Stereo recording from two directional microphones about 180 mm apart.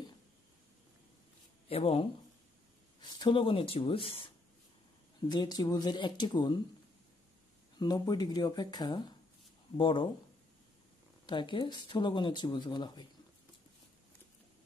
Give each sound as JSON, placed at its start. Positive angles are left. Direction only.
{"t": 1.7, "sound": "speech", "side_deg": 35}
{"t": 5.3, "sound": "speech", "side_deg": 25}
{"t": 7.8, "sound": "speech", "side_deg": 20}
{"t": 11.2, "sound": "speech", "side_deg": 25}